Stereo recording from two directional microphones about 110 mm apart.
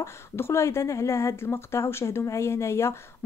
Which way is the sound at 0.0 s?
25° left (ahead or behind).